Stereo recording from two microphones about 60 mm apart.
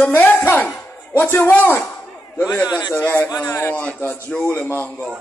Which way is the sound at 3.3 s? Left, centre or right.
Left.